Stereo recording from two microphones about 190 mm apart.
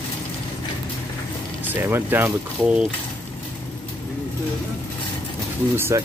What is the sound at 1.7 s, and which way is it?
Speech, 10° right (ahead or behind).